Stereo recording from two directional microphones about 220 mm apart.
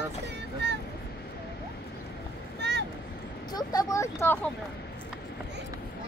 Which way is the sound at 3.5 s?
15° left (ahead or behind).